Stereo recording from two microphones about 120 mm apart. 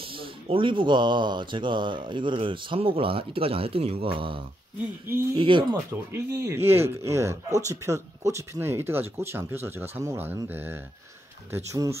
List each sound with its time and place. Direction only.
0.0 s speech: 50° right (ahead or behind)
6.1 s speech: 25° right (ahead or behind)